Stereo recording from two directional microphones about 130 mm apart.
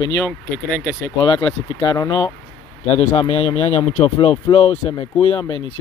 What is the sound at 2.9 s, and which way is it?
Speech, 50° left (ahead or behind).